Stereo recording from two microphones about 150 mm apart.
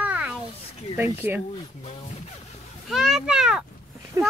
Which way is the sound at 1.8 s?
50° left (ahead or behind).